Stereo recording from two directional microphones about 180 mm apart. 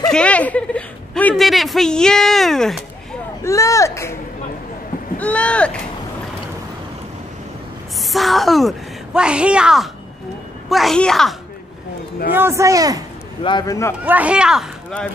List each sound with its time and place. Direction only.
0.0 s speech: 5° left (ahead or behind)
3.4 s speech: 15° left (ahead or behind)
5.2 s speech: 5° left (ahead or behind)
8.1 s speech: centre (ahead or behind)
12.3 s speech: 15° right (ahead or behind)
13.4 s speech: 25° left (ahead or behind)
14.0 s speech: 10° right (ahead or behind)